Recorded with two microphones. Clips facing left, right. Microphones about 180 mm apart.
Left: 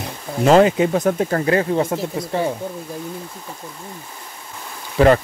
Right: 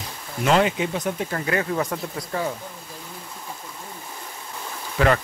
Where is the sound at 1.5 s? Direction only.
30° left (ahead or behind).